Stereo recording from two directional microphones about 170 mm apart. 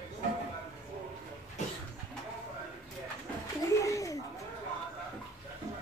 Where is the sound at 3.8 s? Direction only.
20° left (ahead or behind).